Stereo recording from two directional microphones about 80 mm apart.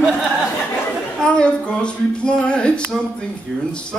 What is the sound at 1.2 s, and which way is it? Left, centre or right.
A man's voice, centre.